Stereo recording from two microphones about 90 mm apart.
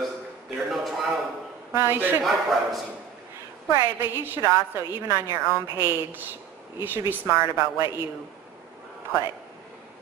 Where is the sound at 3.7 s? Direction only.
25° right (ahead or behind).